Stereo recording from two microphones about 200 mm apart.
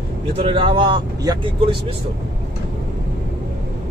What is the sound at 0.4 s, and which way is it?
Speech, 25° right (ahead or behind).